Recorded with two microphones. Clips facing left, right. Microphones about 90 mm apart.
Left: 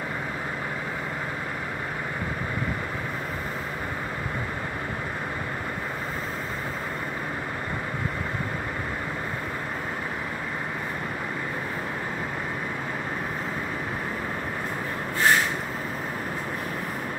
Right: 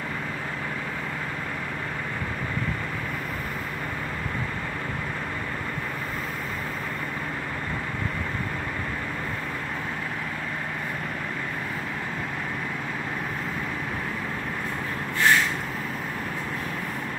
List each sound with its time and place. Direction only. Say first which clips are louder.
15.1 s vehicle: even; 25° left (ahead or behind)